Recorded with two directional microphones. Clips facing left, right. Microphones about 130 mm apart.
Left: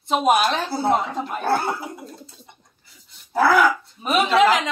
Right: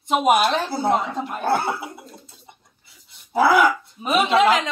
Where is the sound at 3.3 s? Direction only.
15° right (ahead or behind).